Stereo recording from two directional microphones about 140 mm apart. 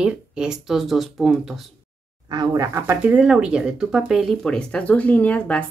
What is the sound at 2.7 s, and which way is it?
Speech, 15° right (ahead or behind).